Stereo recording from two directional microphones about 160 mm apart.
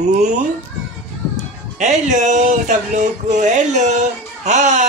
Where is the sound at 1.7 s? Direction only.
50° right (ahead or behind).